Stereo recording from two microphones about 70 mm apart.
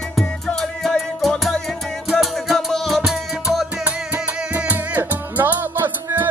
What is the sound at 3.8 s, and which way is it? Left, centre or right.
Music, right.